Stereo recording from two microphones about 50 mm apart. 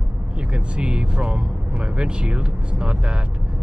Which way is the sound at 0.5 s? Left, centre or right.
Centre.